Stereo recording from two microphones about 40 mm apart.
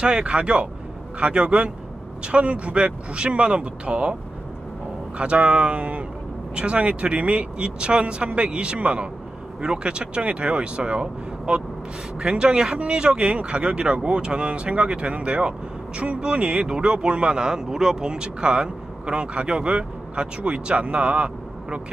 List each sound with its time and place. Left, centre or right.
0.0 s speech: right